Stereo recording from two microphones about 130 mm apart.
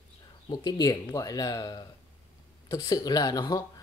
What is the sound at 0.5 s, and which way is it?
A woman's voice, 30° left (ahead or behind).